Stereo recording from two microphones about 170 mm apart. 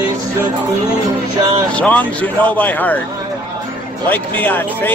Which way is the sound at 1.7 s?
10° left (ahead or behind).